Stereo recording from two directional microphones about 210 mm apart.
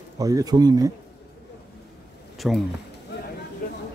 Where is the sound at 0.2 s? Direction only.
15° right (ahead or behind).